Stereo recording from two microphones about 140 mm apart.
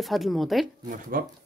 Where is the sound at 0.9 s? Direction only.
90° right.